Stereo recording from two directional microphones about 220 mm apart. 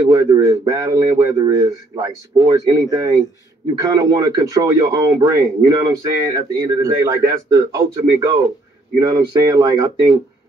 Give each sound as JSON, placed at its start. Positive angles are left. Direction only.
{"t": 0.1, "sound": "speech", "side_deg": -15}